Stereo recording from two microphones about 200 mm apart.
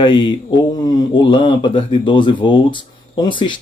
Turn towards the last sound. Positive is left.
turn(degrees=25)  # may be behind; listen again after turning